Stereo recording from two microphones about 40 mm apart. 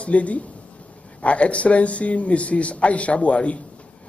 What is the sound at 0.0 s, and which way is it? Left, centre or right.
Speech, left.